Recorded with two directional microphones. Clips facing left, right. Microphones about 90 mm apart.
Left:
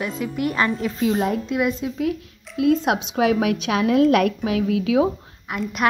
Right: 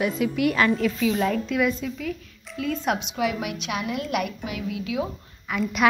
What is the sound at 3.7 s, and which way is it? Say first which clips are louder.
Speech: left 11 dB; 90° left.